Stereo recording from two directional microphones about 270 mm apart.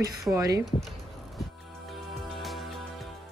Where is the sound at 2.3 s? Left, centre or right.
Centre.